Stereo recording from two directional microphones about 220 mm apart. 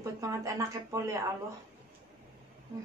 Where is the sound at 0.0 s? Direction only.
15° right (ahead or behind).